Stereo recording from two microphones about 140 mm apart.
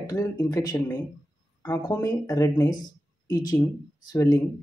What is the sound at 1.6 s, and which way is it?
Speech, 30° left (ahead or behind).